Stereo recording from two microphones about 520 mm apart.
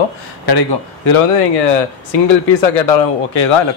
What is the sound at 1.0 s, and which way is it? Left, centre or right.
Speech, left.